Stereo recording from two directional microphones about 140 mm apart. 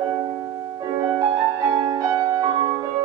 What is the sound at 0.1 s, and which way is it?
Music, 25° right (ahead or behind).